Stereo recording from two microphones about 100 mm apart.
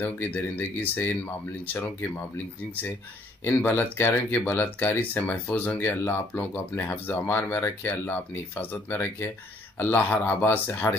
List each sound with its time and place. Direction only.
0.0 s speech: 20° left (ahead or behind)